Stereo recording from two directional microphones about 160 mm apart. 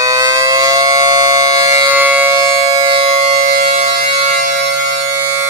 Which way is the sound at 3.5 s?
60° right (ahead or behind).